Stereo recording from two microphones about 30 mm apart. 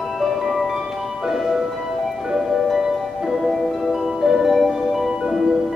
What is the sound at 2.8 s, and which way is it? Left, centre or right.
Music, centre.